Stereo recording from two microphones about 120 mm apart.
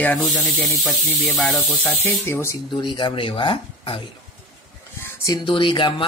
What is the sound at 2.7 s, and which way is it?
Speech, 40° left (ahead or behind).